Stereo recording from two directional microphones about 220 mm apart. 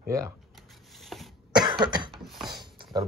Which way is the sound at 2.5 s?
20° right (ahead or behind).